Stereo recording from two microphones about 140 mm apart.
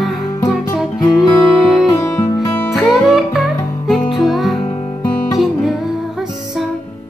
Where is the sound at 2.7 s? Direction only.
Centre (ahead or behind).